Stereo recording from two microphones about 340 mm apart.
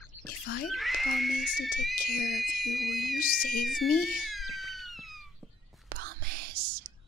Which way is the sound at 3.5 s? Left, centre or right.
Centre.